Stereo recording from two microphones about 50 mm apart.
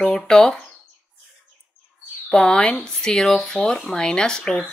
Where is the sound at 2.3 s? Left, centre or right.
Centre.